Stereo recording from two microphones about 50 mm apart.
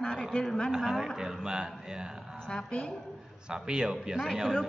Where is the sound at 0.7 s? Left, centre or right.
Centre.